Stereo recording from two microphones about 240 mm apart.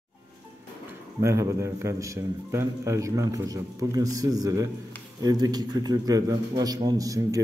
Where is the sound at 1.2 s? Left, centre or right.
Centre.